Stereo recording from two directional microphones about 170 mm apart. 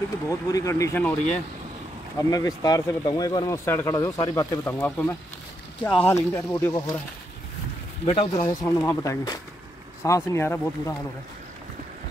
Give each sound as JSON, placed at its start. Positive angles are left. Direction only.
{"t": 0.3, "sound": "speech", "side_deg": 20}
{"t": 2.1, "sound": "speech", "side_deg": 20}
{"t": 8.0, "sound": "speech", "side_deg": 35}
{"t": 8.5, "sound": "speech", "side_deg": 20}